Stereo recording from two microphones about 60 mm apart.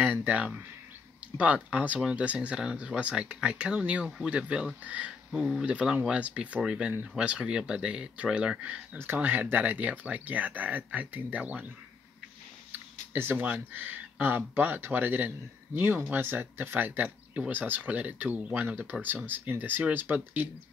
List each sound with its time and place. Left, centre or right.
0.0 s a sound: right
1.4 s speech: right
5.3 s speech: centre
5.7 s speech: right
8.9 s speech: right
12.7 s a sound: right
13.5 s speech: right